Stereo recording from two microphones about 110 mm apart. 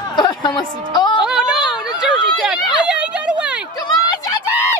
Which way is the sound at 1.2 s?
5° right (ahead or behind).